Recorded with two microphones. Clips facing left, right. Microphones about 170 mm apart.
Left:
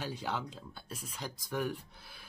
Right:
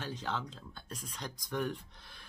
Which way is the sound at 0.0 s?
10° left (ahead or behind).